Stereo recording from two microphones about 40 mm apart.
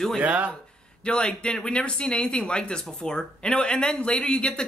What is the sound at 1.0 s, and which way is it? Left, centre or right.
Speech, left.